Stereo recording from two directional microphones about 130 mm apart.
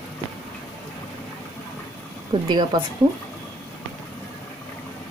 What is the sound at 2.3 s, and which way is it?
Speech, 35° right (ahead or behind).